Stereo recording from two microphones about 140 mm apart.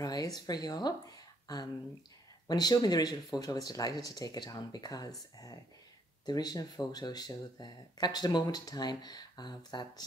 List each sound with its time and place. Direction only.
0.0 s speech: 25° left (ahead or behind)
6.2 s speech: 30° left (ahead or behind)